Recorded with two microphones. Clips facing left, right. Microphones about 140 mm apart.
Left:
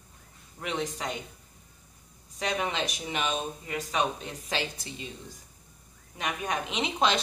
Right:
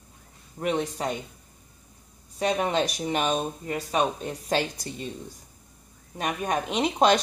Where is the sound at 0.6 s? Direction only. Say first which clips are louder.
Right 6 dB; 40° right (ahead or behind).